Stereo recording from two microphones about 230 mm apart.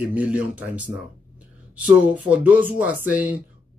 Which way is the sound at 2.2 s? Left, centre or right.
Centre.